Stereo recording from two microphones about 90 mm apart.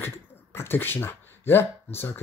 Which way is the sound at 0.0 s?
25° left (ahead or behind).